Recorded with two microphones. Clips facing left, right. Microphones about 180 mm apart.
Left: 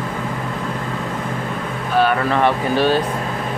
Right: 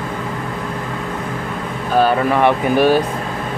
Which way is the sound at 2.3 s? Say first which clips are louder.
Right 3 dB; 10° right (ahead or behind).